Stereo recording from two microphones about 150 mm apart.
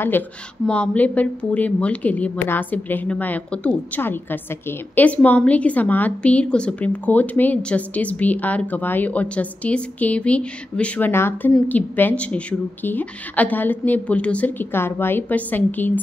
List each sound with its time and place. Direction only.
0.7 s speech: 10° left (ahead or behind)